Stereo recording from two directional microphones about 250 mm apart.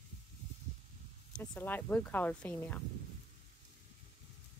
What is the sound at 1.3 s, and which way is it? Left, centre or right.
Speech, centre.